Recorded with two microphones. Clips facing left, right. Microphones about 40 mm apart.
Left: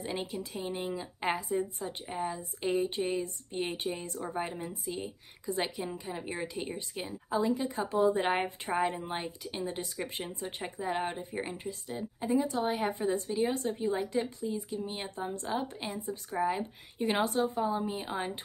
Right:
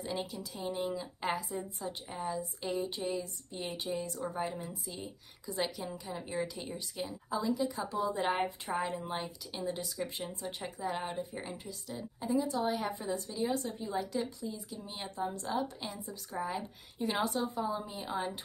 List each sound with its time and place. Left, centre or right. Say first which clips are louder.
0.0 s a woman's voice: left 2 dB; left
17.0 s a woman's voice: left 4 dB; left